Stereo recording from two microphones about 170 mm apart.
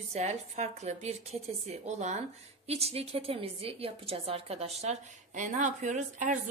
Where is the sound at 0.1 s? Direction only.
40° right (ahead or behind).